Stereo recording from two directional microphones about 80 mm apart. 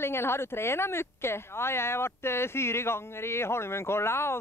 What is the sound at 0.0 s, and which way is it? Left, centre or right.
Speech, left.